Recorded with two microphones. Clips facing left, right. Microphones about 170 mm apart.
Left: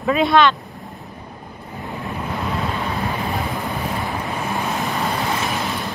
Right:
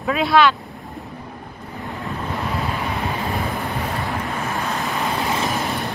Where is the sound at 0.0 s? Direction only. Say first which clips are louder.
Left 1 dB; centre (ahead or behind).